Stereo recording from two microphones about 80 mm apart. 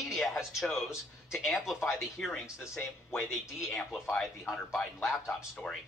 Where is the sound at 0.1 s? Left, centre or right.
Centre.